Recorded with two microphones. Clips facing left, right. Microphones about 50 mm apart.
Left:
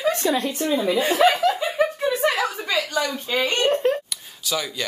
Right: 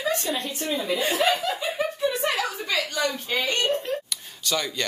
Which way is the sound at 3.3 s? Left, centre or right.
Left.